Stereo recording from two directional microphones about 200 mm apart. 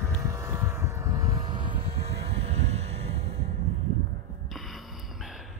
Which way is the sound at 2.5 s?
35° right (ahead or behind).